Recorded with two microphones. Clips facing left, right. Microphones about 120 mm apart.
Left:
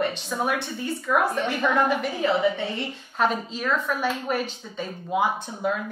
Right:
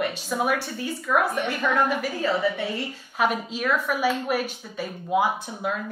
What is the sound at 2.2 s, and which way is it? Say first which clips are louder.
Speech: left 2 dB; 20° left (ahead or behind).